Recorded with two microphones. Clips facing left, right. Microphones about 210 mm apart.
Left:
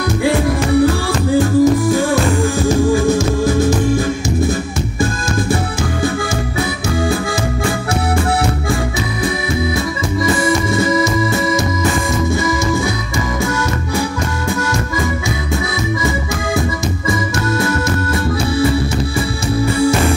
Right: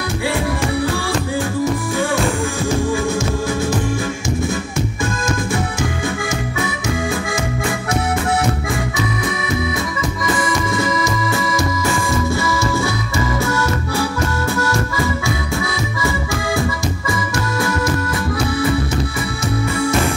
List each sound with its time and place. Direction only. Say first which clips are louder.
1.6 s music: left 7 dB; 40° left (ahead or behind)
10.2 s music: left 5 dB; 25° left (ahead or behind)